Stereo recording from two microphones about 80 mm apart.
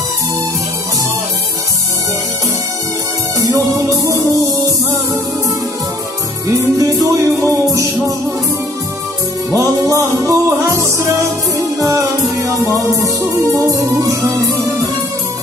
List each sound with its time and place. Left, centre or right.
3.5 s music: right
6.8 s music: right
9.5 s music: right